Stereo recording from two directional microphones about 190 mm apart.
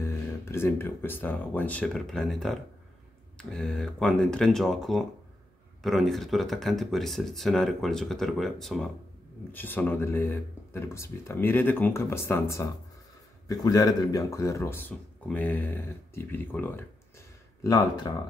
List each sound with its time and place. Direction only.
0.0 s speech: 15° left (ahead or behind)
17.6 s speech: 20° left (ahead or behind)